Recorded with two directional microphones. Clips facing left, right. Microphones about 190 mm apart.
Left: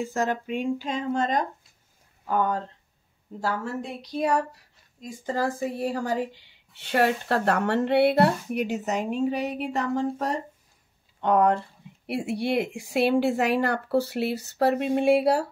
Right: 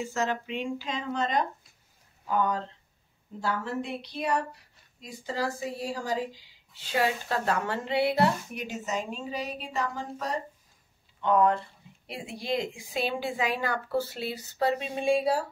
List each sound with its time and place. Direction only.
0.0 s a woman's voice: 55° left (ahead or behind)